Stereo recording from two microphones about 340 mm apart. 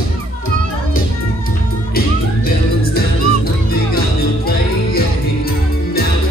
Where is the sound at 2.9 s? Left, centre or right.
Left.